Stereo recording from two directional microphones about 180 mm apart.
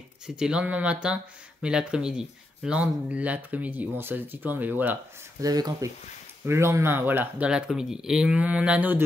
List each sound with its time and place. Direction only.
0.4 s speech: 5° right (ahead or behind)
5.4 s speech: 20° right (ahead or behind)